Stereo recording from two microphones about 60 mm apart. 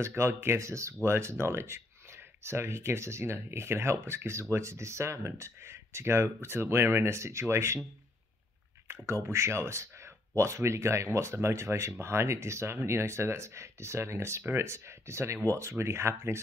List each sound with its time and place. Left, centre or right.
0.0 s speech: right
8.8 s speech: right